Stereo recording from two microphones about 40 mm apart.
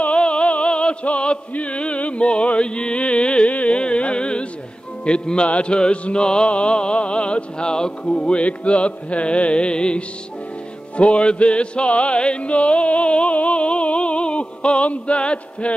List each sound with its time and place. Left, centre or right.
0.0 s music: left